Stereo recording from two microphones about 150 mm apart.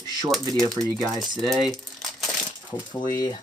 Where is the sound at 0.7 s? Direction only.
Centre (ahead or behind).